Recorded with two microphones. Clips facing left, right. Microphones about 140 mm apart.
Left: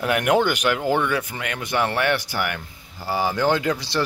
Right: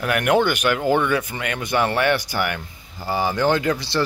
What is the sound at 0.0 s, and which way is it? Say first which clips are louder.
A man's voice: right 1 dB; 20° left (ahead or behind).